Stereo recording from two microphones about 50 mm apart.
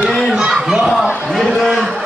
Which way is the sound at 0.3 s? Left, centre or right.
Centre.